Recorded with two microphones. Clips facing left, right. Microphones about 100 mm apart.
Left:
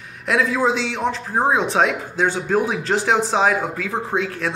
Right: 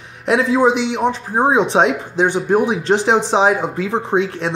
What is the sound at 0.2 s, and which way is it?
Speech, 20° right (ahead or behind).